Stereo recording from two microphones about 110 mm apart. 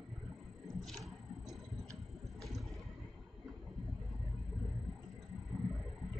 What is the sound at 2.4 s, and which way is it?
Boat, centre (ahead or behind).